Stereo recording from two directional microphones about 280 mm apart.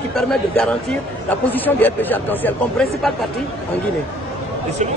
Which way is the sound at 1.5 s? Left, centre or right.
Centre.